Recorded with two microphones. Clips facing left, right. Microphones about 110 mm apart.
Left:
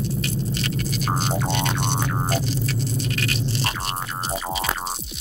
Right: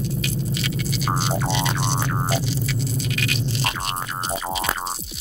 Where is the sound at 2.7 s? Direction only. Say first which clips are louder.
Even; 40° left (ahead or behind).